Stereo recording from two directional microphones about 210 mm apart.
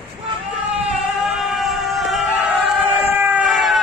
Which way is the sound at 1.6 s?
Centre (ahead or behind).